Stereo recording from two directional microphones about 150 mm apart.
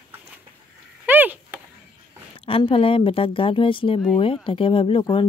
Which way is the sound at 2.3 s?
35° left (ahead or behind).